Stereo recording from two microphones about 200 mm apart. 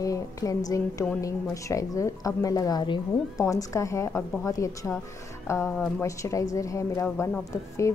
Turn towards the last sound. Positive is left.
turn(degrees=15)  # may be behind; listen again after turning